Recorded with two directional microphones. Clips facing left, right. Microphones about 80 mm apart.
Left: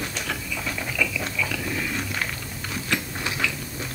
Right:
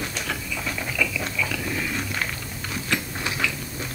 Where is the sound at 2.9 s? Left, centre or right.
Right.